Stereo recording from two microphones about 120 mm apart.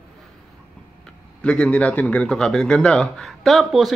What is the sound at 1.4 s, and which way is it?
Speech, 10° left (ahead or behind).